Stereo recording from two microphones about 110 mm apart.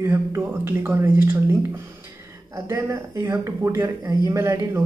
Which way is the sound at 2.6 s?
30° right (ahead or behind).